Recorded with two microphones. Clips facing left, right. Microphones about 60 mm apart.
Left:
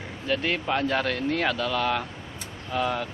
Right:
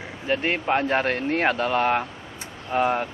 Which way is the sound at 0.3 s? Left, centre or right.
Right.